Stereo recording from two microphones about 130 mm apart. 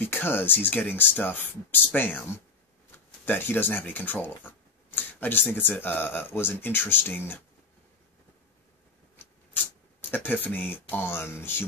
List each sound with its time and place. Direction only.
0.0 s speech: 15° left (ahead or behind)
10.1 s speech: 15° left (ahead or behind)